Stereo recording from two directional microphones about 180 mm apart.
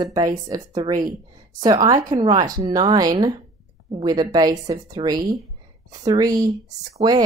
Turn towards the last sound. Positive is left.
turn(degrees=-25)  # may be behind; listen again after turning